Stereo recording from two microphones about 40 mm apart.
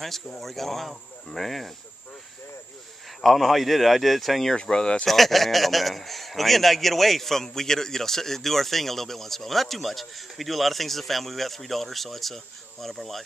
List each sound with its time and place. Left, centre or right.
0.4 s a man's voice: centre
3.2 s a man's voice: centre
4.6 s speech: left
5.0 s a man's voice: centre